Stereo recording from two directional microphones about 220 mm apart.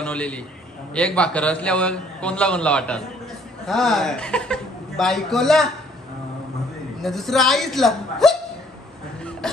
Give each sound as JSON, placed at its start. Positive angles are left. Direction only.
{"t": 0.0, "sound": "a sound", "side_deg": 5}
{"t": 0.9, "sound": "a man's voice", "side_deg": 5}
{"t": 7.0, "sound": "a man's voice", "side_deg": 0}